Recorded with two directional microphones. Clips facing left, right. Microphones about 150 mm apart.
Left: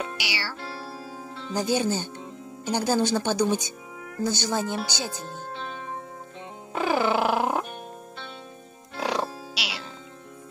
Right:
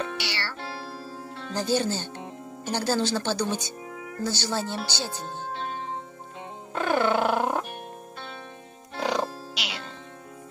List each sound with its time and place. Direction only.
0.0 s music: 10° left (ahead or behind)
1.5 s speech: 15° left (ahead or behind)
6.7 s music: 5° left (ahead or behind)
9.0 s music: 5° left (ahead or behind)